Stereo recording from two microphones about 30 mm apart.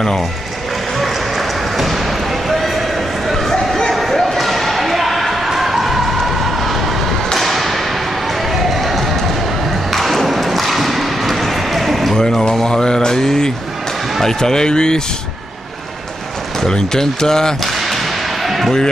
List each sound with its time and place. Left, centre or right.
0.9 s basketball bounce: centre
3.3 s a sound: centre
3.9 s basketball bounce: centre
7.3 s a sound: centre
8.7 s run: centre
9.9 s thump: centre
12.2 s speech: centre
16.6 s speech: left
17.7 s whip: centre